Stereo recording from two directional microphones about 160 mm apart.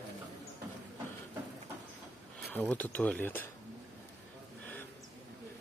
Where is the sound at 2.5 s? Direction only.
10° left (ahead or behind).